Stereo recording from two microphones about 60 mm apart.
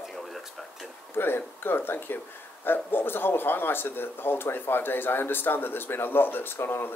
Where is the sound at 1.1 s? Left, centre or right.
Left.